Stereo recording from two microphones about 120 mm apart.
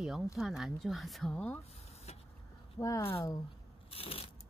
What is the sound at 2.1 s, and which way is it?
Vehicle, 65° left (ahead or behind).